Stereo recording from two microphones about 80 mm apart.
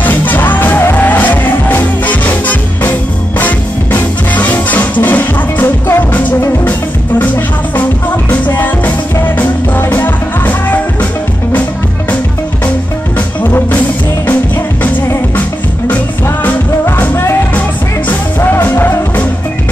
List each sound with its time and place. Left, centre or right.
0.0 s music: left
13.4 s music: left
16.9 s music: left